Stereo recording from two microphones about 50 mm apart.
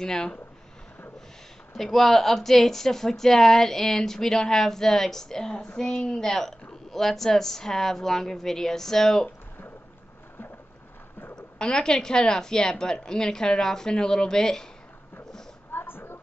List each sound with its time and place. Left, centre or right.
0.0 s speech: centre
1.8 s speech: centre
11.5 s speech: centre
15.7 s a sound: left